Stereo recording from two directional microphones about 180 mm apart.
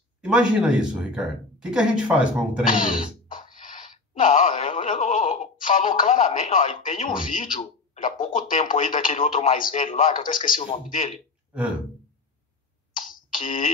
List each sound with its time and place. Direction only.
0.2 s speech: 5° right (ahead or behind)
2.6 s speech: 50° left (ahead or behind)
12.9 s beatboxing: 50° left (ahead or behind)